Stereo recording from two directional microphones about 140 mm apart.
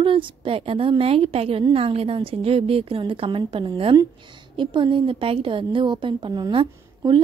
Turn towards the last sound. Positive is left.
turn(degrees=-35)  # may be behind; listen again after turning